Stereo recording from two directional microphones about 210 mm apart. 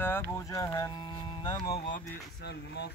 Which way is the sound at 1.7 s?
45° left (ahead or behind).